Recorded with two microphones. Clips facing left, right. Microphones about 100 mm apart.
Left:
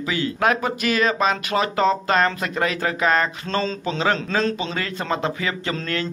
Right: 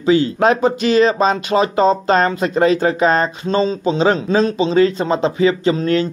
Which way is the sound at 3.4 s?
15° right (ahead or behind).